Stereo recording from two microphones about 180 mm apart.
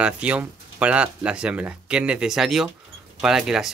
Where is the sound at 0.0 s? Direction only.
5° right (ahead or behind).